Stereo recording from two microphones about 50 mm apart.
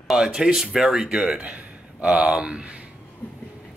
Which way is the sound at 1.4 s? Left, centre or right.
Right.